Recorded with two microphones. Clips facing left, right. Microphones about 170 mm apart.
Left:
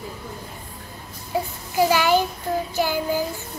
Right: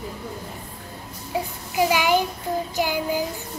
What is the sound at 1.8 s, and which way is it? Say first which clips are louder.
A woman's voice: left 2 dB; 15° right (ahead or behind).